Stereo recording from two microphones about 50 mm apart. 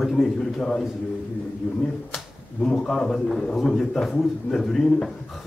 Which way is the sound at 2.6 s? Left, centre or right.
Centre.